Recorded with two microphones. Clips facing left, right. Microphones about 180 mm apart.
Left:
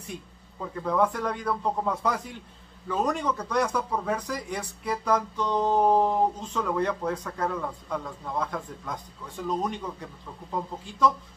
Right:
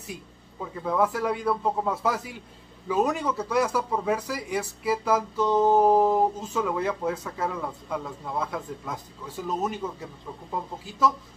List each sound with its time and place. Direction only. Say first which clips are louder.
0.0 s speech: even; 5° right (ahead or behind)